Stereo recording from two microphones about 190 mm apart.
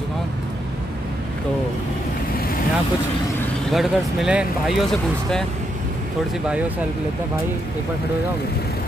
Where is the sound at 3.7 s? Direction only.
Centre (ahead or behind).